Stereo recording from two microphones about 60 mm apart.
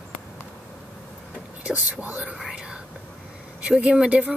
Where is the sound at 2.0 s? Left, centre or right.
Centre.